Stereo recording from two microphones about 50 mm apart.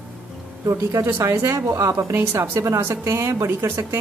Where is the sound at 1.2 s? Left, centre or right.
Right.